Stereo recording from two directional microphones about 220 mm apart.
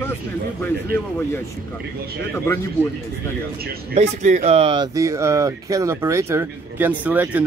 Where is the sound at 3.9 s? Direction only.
30° right (ahead or behind); by 7.4 s 10° right (ahead or behind).